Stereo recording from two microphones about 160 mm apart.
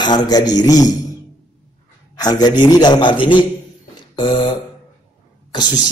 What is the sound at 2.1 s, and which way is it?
Speech, 25° left (ahead or behind).